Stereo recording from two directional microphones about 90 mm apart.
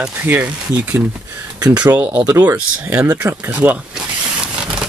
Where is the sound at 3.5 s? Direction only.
20° right (ahead or behind).